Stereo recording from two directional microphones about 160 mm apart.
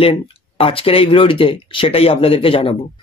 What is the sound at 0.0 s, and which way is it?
Speech, 35° left (ahead or behind).